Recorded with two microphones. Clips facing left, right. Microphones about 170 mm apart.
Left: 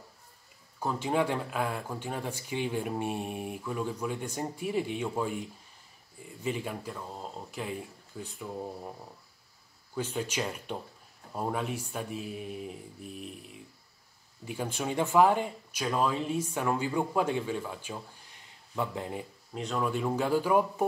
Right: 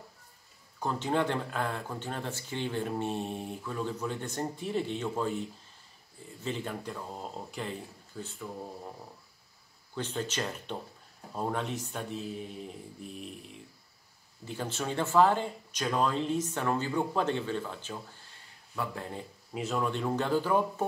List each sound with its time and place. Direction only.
0.7 s speech: 10° left (ahead or behind)
6.4 s speech: 10° left (ahead or behind)
9.9 s speech: 10° left (ahead or behind)
14.4 s speech: 10° left (ahead or behind)
19.5 s speech: 5° right (ahead or behind)
19.9 s speech: 10° left (ahead or behind)